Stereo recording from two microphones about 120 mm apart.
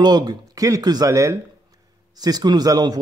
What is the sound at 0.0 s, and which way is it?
Speech, 35° right (ahead or behind).